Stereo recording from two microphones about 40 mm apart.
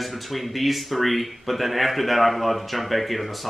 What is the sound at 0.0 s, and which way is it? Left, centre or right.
Speech, centre.